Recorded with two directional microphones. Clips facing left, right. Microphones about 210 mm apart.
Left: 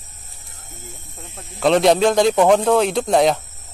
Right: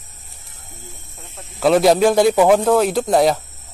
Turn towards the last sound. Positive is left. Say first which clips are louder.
# right 1 dB
turn(degrees=0)  # may be behind; listen again after turning